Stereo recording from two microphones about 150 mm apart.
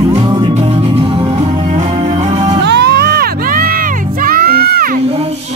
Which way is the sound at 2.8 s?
90° right.